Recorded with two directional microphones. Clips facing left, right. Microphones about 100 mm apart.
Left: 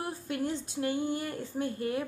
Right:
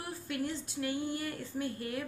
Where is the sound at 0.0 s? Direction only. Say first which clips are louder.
Left 3 dB; 25° left (ahead or behind).